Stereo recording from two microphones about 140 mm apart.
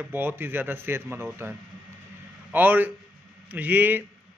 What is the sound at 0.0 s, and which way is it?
A man's voice, 15° right (ahead or behind).